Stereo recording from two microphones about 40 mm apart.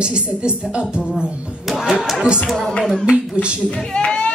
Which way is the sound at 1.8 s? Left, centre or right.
Centre.